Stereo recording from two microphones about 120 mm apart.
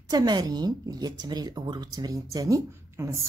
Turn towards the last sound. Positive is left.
turn(degrees=-25)  # may be behind; listen again after turning